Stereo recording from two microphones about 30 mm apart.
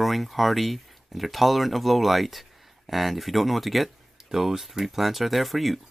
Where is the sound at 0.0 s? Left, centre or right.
Centre.